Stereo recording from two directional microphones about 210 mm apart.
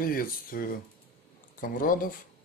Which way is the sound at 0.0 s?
45° left (ahead or behind).